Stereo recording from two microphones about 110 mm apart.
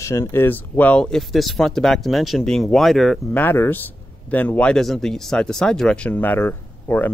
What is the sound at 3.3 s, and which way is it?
Speech, 20° left (ahead or behind).